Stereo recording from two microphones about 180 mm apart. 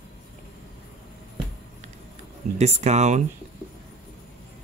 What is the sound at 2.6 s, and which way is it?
Speech, 40° right (ahead or behind).